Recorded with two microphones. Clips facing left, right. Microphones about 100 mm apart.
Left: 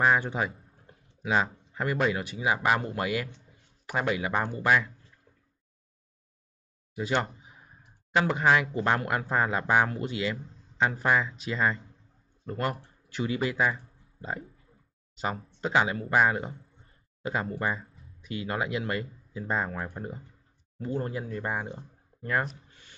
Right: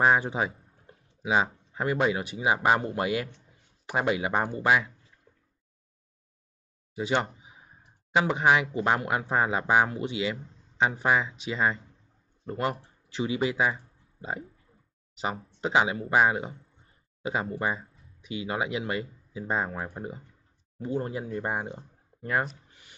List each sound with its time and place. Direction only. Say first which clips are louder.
0.0 s speech: right 1 dB; 20° right (ahead or behind)
7.0 s speech: right 1 dB; 20° right (ahead or behind)